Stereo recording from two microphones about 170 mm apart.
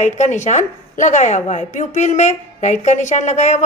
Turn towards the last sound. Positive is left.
turn(degrees=45)  # may be behind; listen again after turning